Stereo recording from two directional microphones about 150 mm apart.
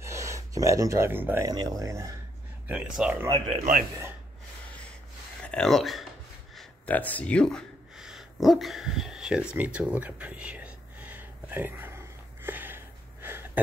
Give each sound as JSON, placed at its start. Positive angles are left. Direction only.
{"t": 0.0, "sound": "speech", "side_deg": -20}
{"t": 2.6, "sound": "speech", "side_deg": -5}
{"t": 3.4, "sound": "a man's voice", "side_deg": -45}
{"t": 5.4, "sound": "speech", "side_deg": 5}
{"t": 6.5, "sound": "a sound", "side_deg": 5}